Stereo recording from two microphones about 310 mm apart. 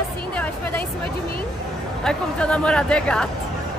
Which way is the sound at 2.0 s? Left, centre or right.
Centre.